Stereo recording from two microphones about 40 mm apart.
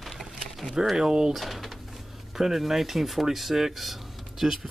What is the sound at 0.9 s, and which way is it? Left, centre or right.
Speech, centre.